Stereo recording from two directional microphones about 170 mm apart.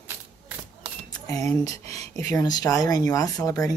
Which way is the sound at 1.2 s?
20° left (ahead or behind).